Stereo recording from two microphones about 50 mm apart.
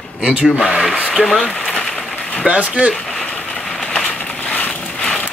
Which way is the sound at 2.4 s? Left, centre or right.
Right.